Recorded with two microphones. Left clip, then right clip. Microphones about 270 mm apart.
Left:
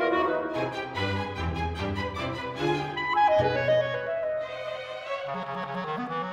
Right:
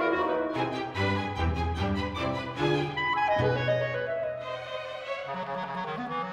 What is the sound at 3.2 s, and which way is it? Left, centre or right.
Clarinet, left.